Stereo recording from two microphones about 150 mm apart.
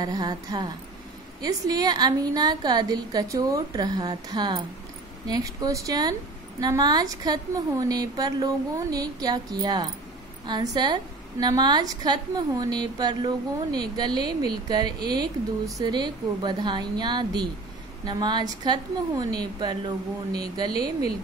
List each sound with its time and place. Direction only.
0.0 s a woman's voice: 25° right (ahead or behind)